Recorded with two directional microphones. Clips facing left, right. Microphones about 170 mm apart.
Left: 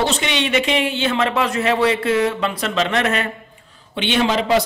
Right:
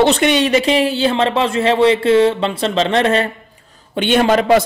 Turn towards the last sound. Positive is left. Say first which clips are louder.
# right 5 dB
turn(degrees=-55)  # may be behind; listen again after turning